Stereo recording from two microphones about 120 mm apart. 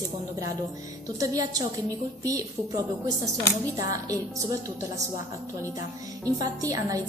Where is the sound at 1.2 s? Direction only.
30° right (ahead or behind).